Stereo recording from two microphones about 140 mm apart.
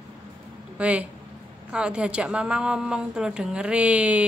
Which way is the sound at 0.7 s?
10° right (ahead or behind).